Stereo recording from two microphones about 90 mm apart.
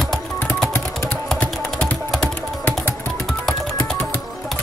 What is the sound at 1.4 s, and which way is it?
Typing, 5° left (ahead or behind).